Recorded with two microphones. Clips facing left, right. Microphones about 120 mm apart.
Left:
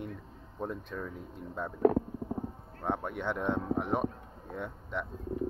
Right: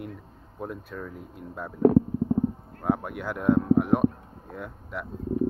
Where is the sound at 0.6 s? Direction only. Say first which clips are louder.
Right 1 dB; 5° right (ahead or behind).